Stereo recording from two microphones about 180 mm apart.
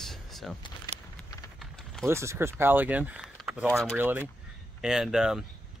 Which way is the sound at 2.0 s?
15° right (ahead or behind).